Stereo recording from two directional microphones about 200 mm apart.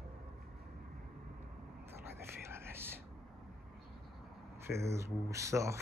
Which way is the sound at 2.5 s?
10° right (ahead or behind).